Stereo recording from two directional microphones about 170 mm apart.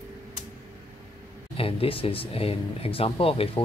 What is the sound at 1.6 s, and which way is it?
Speech, 35° left (ahead or behind).